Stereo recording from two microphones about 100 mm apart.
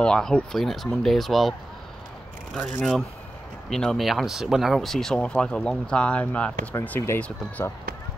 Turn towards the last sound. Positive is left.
turn(degrees=25)  # may be behind; listen again after turning